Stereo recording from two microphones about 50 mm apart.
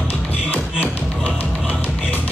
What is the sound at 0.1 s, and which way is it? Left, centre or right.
Music, left.